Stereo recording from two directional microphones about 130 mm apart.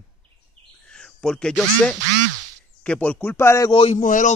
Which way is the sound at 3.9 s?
75° left (ahead or behind).